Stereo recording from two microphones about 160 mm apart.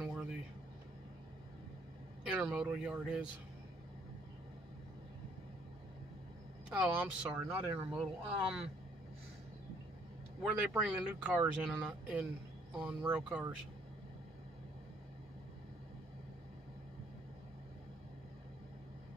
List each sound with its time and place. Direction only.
0.0 s a sound: 5° right (ahead or behind)
2.3 s speech: 5° right (ahead or behind)
6.7 s speech: 5° right (ahead or behind)
10.7 s speech: 5° right (ahead or behind)